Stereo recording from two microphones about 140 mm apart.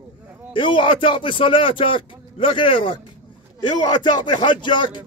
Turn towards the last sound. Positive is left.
turn(degrees=35)  # may be behind; listen again after turning